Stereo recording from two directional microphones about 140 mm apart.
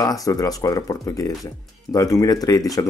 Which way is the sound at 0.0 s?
25° left (ahead or behind).